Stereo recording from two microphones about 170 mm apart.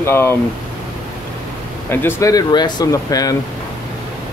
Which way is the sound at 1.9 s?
15° left (ahead or behind).